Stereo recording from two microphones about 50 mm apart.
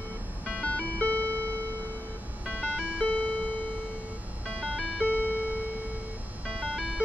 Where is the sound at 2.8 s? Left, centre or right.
Left.